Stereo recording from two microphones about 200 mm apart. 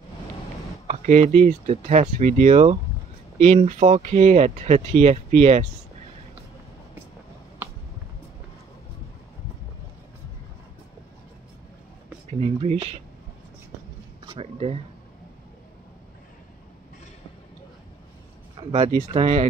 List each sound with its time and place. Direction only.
0.8 s speech: 35° right (ahead or behind)
12.3 s speech: 30° right (ahead or behind)
14.2 s speech: 25° right (ahead or behind)
18.7 s speech: 30° right (ahead or behind)